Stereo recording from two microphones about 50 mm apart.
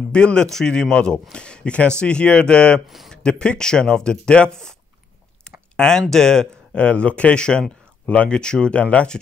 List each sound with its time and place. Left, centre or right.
0.1 s a man's voice: centre
5.8 s speech: centre